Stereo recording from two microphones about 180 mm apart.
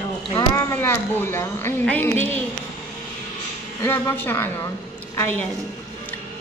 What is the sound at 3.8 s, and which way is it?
Speech, 15° left (ahead or behind).